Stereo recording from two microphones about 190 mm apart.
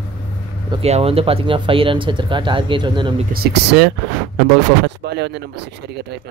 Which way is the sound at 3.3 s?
55° right (ahead or behind).